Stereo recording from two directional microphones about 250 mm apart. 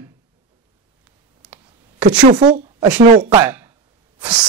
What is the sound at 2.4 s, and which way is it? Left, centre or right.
Speech, right.